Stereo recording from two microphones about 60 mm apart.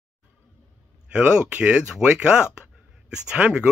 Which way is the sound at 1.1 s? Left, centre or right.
Right.